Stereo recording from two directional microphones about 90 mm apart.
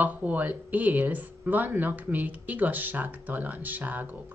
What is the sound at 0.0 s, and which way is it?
Speech, 20° right (ahead or behind).